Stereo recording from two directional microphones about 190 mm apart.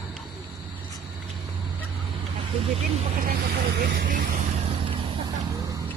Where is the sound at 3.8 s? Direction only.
50° right (ahead or behind).